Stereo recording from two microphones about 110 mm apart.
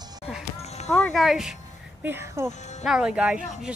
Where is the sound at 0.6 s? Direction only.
90° left.